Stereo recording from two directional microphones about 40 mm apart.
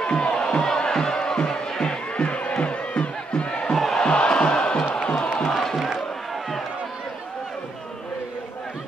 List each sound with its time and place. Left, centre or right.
0.0 s music: left
3.7 s music: centre
4.0 s music: left
5.5 s music: centre